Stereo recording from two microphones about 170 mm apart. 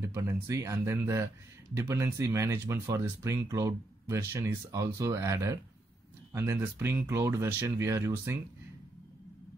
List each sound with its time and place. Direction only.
0.0 s speech: 15° right (ahead or behind)